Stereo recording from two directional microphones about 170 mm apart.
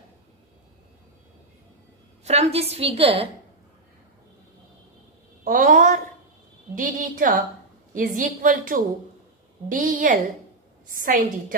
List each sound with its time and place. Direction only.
2.2 s a woman's voice: 40° right (ahead or behind)
5.4 s a sound: 50° right (ahead or behind)
6.7 s a woman's voice: 55° right (ahead or behind)